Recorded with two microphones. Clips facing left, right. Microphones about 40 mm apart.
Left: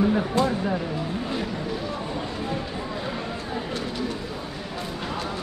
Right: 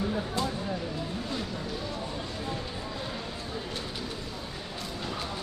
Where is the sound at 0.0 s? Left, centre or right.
Left.